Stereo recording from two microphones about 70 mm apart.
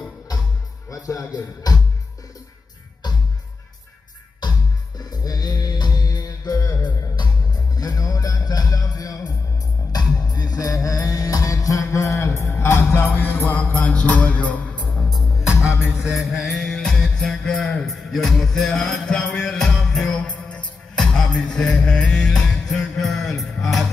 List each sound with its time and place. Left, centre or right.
0.8 s speech: left
4.4 s music: left
9.9 s music: left
12.3 s music: left
15.0 s music: centre
20.2 s music: centre